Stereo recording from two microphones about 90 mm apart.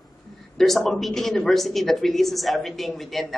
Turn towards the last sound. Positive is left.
turn(degrees=0)  # may be behind; listen again after turning